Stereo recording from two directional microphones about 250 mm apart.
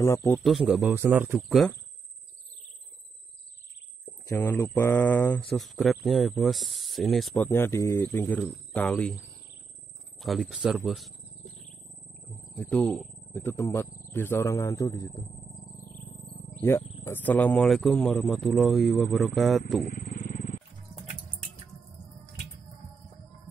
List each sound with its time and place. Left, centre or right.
0.0 s a man's voice: centre
4.3 s speech: centre
10.1 s a man's voice: centre
17.0 s a man's voice: centre
19.8 s wild animals: left